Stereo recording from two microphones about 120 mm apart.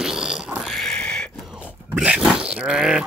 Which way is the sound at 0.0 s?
5° right (ahead or behind).